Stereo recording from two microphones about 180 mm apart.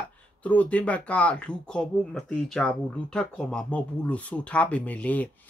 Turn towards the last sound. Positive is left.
turn(degrees=10)  # may be behind; listen again after turning